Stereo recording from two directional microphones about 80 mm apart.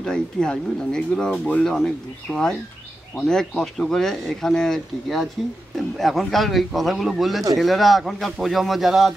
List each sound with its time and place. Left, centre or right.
0.0 s speech: centre